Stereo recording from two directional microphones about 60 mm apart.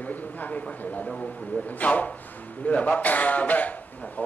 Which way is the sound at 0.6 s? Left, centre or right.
Left.